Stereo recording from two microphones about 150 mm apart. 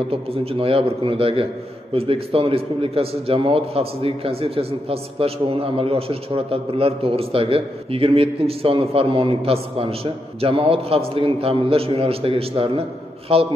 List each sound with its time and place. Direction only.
0.1 s a man's voice: 40° right (ahead or behind)